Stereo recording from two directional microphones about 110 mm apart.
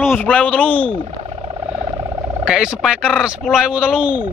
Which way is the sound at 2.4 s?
5° right (ahead or behind).